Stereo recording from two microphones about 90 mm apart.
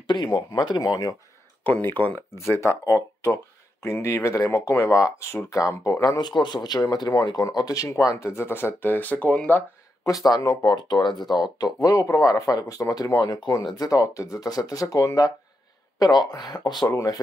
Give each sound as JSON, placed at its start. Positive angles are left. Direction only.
{"t": 0.0, "sound": "speech", "side_deg": 60}
{"t": 1.6, "sound": "speech", "side_deg": 20}
{"t": 10.0, "sound": "speech", "side_deg": 45}
{"t": 16.8, "sound": "speech", "side_deg": 40}